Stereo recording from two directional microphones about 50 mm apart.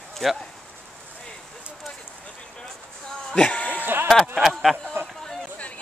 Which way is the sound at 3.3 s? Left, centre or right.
Left.